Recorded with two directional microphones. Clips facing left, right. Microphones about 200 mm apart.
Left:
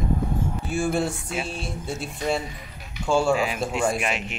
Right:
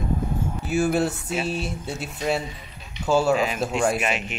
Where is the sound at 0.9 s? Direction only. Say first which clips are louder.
Right 2 dB; 5° right (ahead or behind).